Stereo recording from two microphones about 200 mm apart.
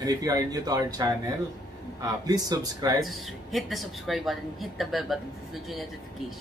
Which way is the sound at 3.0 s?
Centre (ahead or behind).